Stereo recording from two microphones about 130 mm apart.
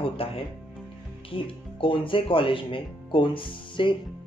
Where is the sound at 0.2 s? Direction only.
45° left (ahead or behind).